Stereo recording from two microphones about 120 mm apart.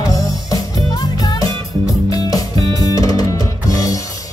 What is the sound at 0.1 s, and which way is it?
Music, 30° left (ahead or behind).